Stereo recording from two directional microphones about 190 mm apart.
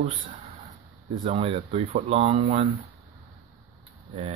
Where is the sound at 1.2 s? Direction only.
35° right (ahead or behind).